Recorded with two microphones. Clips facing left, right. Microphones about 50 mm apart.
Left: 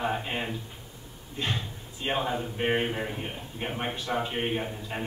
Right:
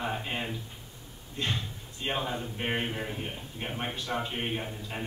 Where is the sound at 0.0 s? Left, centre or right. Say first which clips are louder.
Left 3 dB; centre.